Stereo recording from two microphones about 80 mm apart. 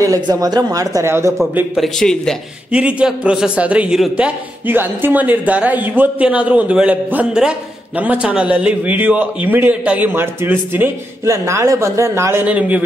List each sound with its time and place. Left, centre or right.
0.0 s speech: right
1.0 s a man's voice: right
1.8 s a man's voice: centre
2.7 s a man's voice: centre
11.2 s a man's voice: right
12.4 s a man's voice: centre